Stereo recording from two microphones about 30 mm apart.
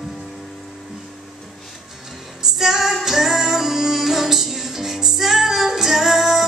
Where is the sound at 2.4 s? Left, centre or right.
Centre.